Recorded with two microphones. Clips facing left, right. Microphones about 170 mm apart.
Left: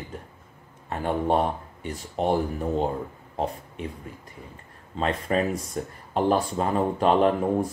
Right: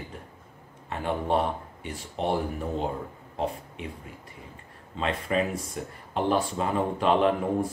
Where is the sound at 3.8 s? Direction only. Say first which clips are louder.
Left 4 dB; 40° left (ahead or behind).